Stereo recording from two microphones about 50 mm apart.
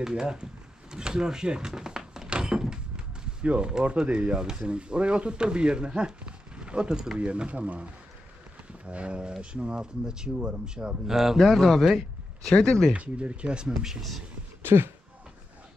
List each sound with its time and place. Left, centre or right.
0.0 s speech: centre
2.2 s thunk: centre
3.4 s speech: right
11.1 s speech: centre
12.5 s speech: centre
12.9 s speech: right
14.6 s a sound: right